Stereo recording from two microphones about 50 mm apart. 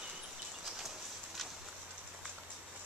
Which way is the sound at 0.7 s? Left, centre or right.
Centre.